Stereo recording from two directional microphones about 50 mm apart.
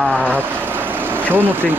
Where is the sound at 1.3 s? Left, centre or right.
Right.